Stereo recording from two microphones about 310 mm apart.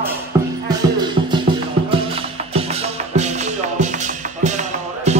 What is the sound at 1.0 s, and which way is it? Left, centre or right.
Music, centre.